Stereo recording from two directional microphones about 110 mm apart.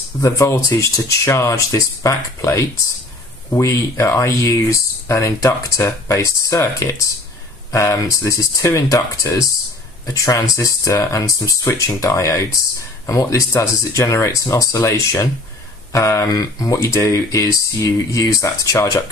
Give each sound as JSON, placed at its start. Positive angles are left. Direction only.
{"t": 0.2, "sound": "speech", "side_deg": 30}